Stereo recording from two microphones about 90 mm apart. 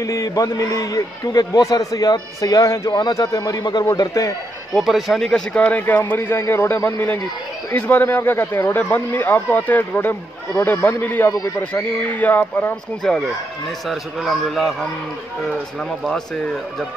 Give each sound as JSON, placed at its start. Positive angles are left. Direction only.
{"t": 0.0, "sound": "a man's voice", "side_deg": 40}
{"t": 2.9, "sound": "a man's voice", "side_deg": 50}
{"t": 4.7, "sound": "speech", "side_deg": 0}
{"t": 13.0, "sound": "a man's voice", "side_deg": 5}